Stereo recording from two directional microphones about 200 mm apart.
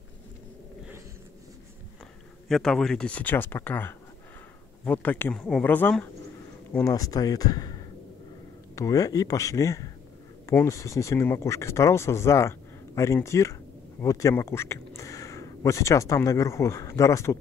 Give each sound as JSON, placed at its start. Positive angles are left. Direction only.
{"t": 2.4, "sound": "speech", "side_deg": 0}